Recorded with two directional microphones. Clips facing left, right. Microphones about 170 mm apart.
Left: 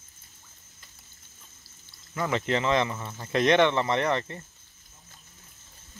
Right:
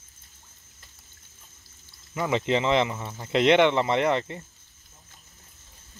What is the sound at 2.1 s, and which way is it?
Speech, 15° right (ahead or behind).